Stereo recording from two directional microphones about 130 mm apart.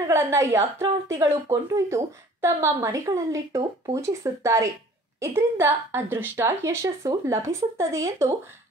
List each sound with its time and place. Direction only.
0.0 s a woman's voice: 20° right (ahead or behind)